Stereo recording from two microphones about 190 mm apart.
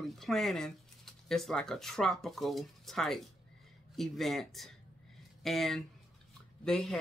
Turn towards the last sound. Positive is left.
turn(degrees=0)  # may be behind; listen again after turning